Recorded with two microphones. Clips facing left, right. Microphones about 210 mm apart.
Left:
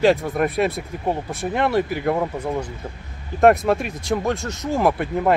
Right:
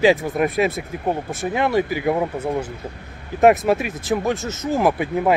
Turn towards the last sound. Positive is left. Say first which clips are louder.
# right 1 dB
turn(degrees=-5)  # may be behind; listen again after turning